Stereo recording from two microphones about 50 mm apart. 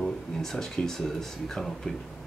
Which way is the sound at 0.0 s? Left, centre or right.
Centre.